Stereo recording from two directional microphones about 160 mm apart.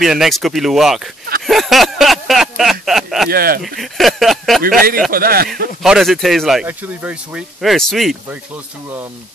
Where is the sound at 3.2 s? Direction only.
70° right (ahead or behind).